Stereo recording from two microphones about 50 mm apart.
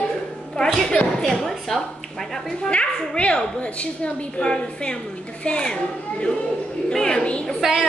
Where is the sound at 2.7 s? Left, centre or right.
Left.